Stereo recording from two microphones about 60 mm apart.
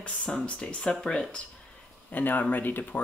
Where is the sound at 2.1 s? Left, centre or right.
Left.